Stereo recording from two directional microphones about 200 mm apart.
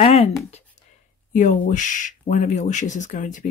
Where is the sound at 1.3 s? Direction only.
40° left (ahead or behind).